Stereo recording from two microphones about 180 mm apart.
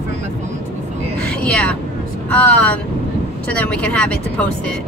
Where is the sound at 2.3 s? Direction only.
10° left (ahead or behind).